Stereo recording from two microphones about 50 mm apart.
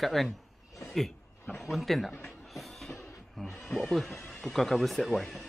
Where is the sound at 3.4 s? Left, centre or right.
Centre.